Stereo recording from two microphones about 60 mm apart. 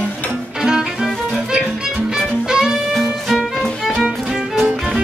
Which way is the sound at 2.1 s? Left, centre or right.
Centre.